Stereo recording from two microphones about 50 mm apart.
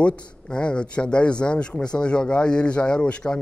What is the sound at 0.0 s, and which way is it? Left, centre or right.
A man's voice, left.